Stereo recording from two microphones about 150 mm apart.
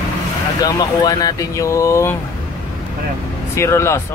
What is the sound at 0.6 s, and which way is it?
Speech, 25° left (ahead or behind).